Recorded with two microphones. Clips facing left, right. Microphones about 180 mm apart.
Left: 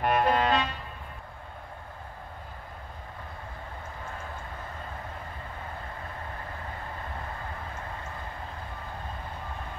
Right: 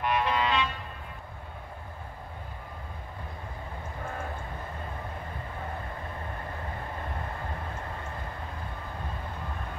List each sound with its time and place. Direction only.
0.0 s vehicle: 50° left (ahead or behind)